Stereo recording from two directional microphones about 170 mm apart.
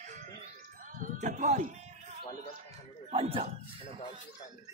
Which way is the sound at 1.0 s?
45° right (ahead or behind).